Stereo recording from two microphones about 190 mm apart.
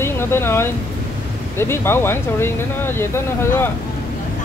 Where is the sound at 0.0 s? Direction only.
15° left (ahead or behind).